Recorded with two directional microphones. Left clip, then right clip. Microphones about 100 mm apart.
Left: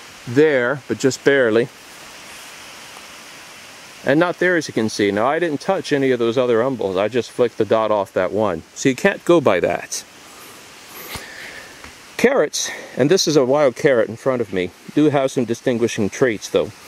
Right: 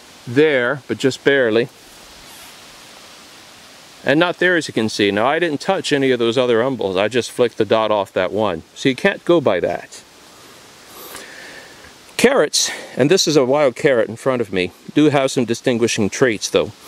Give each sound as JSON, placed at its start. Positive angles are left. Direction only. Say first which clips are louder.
{"t": 0.3, "sound": "speech", "louder": "even", "side_deg": 0}
{"t": 4.0, "sound": "speech", "louder": "right 1 dB", "side_deg": -5}
{"t": 12.2, "sound": "speech", "louder": "right 2 dB", "side_deg": -20}
{"t": 14.1, "sound": "speech", "louder": "right 1 dB", "side_deg": -20}